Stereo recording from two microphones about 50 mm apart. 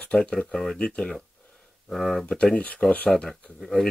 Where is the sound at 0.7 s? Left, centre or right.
Left.